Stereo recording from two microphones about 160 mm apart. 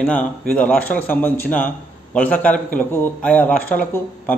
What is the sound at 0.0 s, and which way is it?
A man's voice, 10° left (ahead or behind).